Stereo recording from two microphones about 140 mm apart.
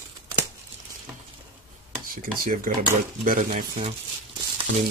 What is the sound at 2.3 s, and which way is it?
Speech, 70° right (ahead or behind).